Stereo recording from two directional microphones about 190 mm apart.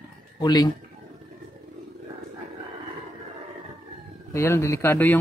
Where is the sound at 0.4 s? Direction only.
20° left (ahead or behind).